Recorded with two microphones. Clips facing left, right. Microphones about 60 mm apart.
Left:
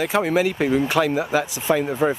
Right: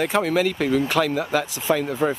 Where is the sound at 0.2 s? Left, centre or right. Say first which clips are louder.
Left 1 dB; centre.